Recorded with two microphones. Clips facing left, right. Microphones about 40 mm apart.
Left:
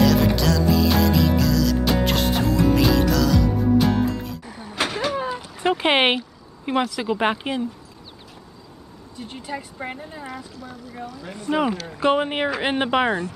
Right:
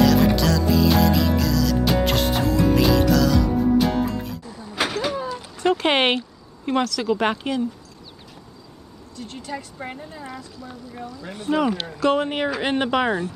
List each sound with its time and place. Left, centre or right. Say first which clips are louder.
0.0 s music: right 1 dB; centre
4.8 s vehicle: right 1 dB; centre
5.1 s a sound: left 2 dB; left
9.1 s speech: even; centre
11.5 s speech: right 1 dB; centre